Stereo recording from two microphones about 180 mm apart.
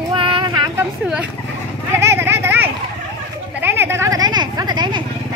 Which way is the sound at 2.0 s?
15° right (ahead or behind).